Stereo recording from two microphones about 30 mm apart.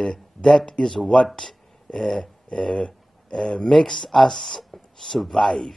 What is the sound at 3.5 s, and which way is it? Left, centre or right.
Speech, left.